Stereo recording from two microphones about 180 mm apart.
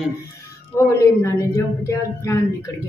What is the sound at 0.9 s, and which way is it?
A woman's voice, 15° left (ahead or behind).